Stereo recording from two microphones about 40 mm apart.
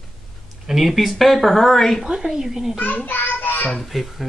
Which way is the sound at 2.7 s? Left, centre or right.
Left.